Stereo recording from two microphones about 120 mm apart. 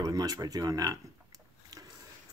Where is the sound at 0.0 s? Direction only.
30° right (ahead or behind).